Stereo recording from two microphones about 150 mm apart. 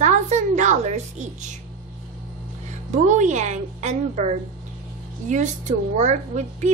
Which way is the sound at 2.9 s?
55° right (ahead or behind).